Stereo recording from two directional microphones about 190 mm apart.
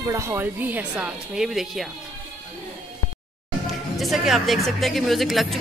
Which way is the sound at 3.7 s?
Centre (ahead or behind).